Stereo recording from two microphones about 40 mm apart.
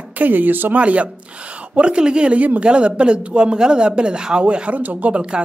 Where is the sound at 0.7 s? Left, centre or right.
Right.